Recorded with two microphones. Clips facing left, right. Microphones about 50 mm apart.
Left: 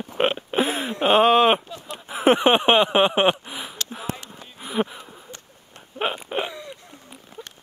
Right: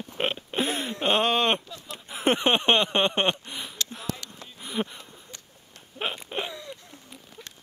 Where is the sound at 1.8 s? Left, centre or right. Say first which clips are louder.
Left 5 dB; left.